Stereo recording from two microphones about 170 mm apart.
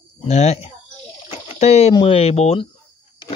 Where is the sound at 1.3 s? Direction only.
40° left (ahead or behind).